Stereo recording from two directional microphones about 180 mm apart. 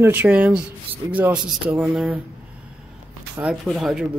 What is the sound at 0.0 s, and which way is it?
Speech, 10° right (ahead or behind).